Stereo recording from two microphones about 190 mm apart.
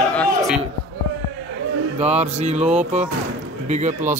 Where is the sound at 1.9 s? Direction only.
35° right (ahead or behind).